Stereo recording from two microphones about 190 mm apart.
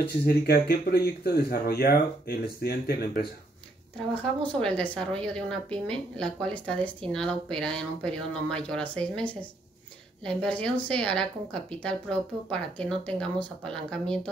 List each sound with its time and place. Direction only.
0.0 s speech: 55° left (ahead or behind)
4.1 s a woman's voice: 5° left (ahead or behind)